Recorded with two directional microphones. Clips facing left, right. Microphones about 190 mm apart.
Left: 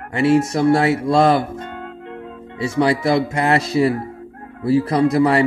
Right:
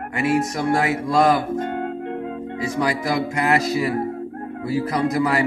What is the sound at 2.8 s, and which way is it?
Music, 30° left (ahead or behind).